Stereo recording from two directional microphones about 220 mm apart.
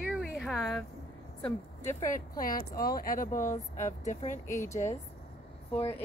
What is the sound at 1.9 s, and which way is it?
Speech, 35° left (ahead or behind).